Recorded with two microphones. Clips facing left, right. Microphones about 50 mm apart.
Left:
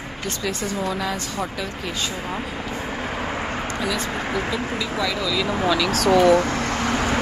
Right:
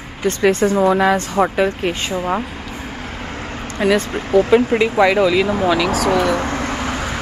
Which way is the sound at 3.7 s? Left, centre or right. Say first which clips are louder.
Right 12 dB; right.